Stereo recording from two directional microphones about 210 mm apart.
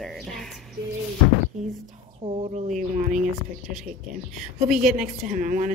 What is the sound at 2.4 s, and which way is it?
Speech, 30° right (ahead or behind).